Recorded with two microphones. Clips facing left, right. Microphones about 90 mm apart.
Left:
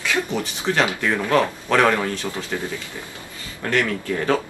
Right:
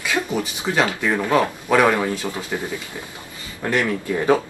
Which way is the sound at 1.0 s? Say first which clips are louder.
Right 1 dB; 10° right (ahead or behind).